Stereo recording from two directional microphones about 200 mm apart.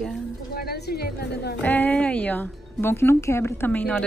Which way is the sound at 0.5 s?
50° left (ahead or behind).